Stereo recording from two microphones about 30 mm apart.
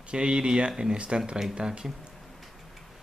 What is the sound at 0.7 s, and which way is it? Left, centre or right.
Speech, right.